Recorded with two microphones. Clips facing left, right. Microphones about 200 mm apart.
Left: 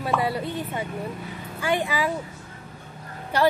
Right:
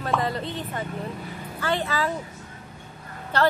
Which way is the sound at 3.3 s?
10° left (ahead or behind).